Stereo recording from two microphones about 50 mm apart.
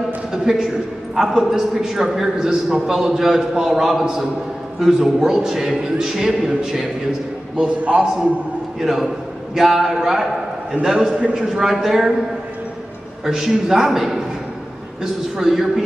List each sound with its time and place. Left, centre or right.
0.3 s a man's voice: centre
7.5 s a man's voice: right
8.7 s a man's voice: centre
13.2 s a man's voice: centre
15.3 s a man's voice: centre